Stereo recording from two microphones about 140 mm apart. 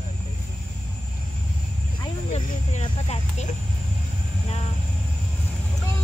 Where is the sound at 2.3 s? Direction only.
55° left (ahead or behind).